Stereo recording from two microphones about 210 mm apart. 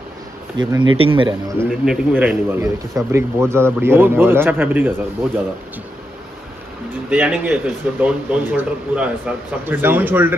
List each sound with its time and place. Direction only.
0.6 s speech: 20° right (ahead or behind)
1.6 s a man's voice: 5° right (ahead or behind)
7.1 s a man's voice: 5° right (ahead or behind)